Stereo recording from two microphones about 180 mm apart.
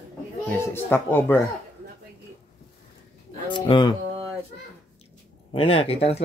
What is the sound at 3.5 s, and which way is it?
Speech, 25° left (ahead or behind).